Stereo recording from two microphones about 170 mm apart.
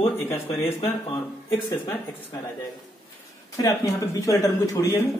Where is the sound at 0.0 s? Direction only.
15° left (ahead or behind).